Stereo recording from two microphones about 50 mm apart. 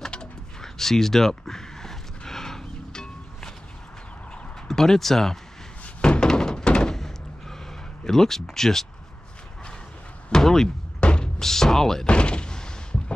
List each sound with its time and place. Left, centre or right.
0.0 s drawer open or close: centre
0.7 s a sound: centre
4.6 s speech: centre
5.9 s thunk: left
8.0 s speech: centre
10.3 s speech: centre
11.0 s music: left
11.3 s speech: centre
12.1 s door: left